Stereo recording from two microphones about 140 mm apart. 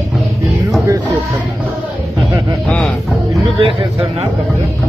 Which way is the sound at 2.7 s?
5° left (ahead or behind).